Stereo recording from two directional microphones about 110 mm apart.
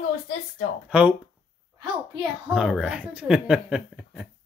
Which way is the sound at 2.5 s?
5° right (ahead or behind).